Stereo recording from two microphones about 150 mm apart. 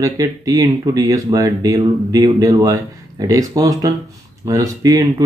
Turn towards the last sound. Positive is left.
turn(degrees=-25)  # may be behind; listen again after turning